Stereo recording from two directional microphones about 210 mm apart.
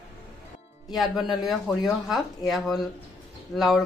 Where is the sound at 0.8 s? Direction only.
Centre (ahead or behind).